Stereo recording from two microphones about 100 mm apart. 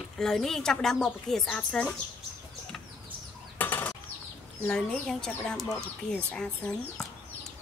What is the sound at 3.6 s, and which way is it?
Bird flight, 20° left (ahead or behind).